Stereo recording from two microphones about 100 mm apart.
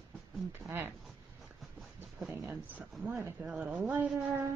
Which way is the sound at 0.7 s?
20° right (ahead or behind).